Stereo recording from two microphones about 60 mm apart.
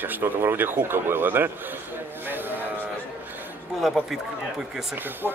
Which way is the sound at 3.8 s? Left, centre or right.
Centre.